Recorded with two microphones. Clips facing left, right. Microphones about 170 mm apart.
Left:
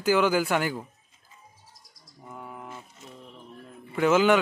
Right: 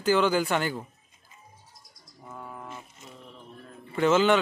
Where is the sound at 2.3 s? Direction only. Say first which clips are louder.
Even; 15° left (ahead or behind).